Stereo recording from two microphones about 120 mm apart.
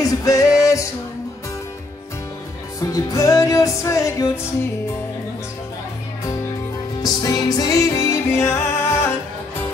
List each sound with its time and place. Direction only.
0.0 s music: 30° left (ahead or behind)
2.8 s music: 30° left (ahead or behind)
7.0 s music: 30° left (ahead or behind)